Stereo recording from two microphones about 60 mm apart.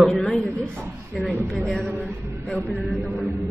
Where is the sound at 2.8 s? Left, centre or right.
Centre.